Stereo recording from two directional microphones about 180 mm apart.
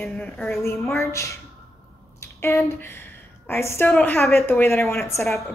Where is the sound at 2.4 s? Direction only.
10° left (ahead or behind).